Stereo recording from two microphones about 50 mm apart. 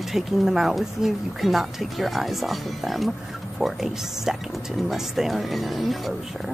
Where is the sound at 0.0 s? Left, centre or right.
Centre.